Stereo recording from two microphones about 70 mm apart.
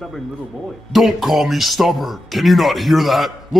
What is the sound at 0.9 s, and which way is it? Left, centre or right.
Speech, centre.